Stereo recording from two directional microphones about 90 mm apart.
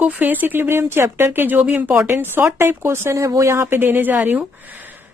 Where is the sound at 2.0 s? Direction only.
25° right (ahead or behind).